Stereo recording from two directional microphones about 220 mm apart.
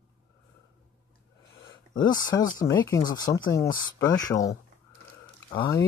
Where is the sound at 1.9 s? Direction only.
20° left (ahead or behind).